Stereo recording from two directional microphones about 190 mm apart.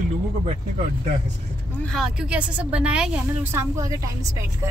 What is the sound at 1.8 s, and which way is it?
A woman's voice, centre (ahead or behind).